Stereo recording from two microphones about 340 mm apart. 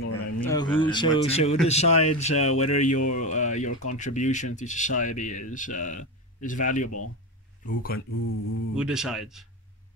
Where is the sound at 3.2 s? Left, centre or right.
Left.